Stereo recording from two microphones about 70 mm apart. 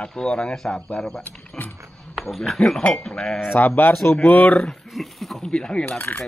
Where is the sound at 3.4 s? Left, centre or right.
Left.